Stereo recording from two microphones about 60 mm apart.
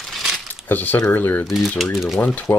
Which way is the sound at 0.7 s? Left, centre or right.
Left.